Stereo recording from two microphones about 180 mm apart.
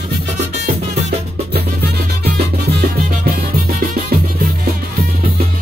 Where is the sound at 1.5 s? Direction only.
65° right (ahead or behind).